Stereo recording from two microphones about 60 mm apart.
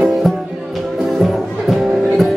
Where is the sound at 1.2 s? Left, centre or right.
Centre.